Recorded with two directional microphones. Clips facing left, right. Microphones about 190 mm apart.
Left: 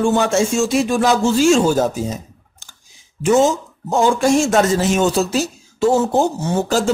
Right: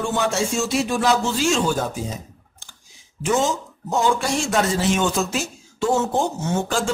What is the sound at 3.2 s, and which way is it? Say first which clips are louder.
Speech: left 7 dB; 45° left (ahead or behind).